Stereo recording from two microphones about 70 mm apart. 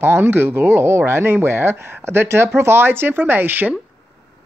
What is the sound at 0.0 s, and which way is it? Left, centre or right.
Speech, right.